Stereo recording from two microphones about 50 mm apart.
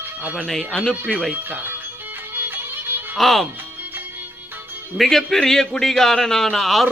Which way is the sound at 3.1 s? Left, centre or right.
Centre.